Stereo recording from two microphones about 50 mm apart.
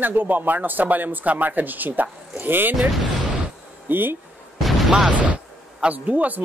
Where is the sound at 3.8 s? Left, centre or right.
Right.